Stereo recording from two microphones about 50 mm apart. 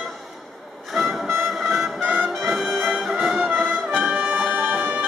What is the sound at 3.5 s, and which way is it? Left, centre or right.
Music, right.